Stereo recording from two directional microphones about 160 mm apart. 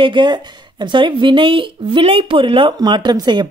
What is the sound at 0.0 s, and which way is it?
Speech, 30° right (ahead or behind).